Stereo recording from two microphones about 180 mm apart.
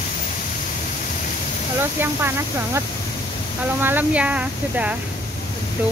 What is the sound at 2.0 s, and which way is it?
Speech, 10° right (ahead or behind).